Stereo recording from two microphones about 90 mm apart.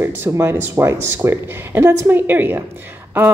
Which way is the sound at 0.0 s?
30° right (ahead or behind).